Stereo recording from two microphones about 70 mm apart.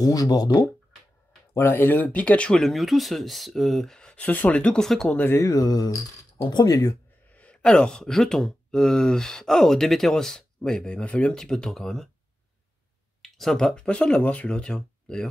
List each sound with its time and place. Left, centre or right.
0.0 s speech: left
1.5 s speech: left; by 2.6 s centre
2.6 s speech: centre
5.1 s speech: left
5.4 s speech: left
7.5 s speech: centre
13.2 s speech: centre